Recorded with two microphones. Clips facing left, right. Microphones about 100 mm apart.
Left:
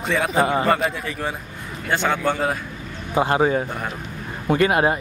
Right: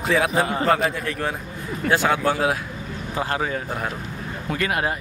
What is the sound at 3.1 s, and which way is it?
Speech, 20° left (ahead or behind).